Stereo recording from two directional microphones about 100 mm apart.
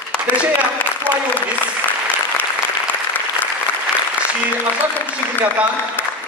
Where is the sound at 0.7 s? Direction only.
15° left (ahead or behind).